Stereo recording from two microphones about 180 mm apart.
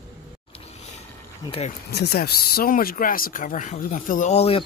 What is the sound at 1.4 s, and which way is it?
Speech, 30° left (ahead or behind).